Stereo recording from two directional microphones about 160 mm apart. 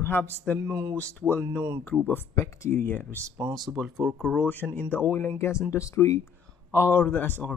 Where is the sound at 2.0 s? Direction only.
15° left (ahead or behind).